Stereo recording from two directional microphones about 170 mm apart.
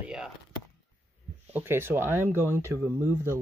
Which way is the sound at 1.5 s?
15° right (ahead or behind).